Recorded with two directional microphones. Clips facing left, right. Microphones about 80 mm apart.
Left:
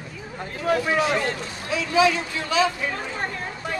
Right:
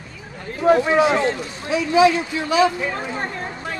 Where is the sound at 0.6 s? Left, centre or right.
Right.